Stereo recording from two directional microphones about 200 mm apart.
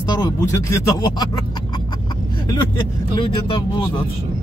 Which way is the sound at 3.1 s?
25° left (ahead or behind).